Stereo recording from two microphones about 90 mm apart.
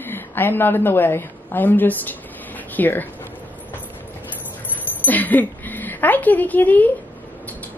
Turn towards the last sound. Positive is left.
turn(degrees=20)  # may be behind; listen again after turning